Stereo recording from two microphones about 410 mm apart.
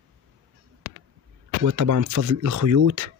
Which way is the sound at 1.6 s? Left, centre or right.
Right.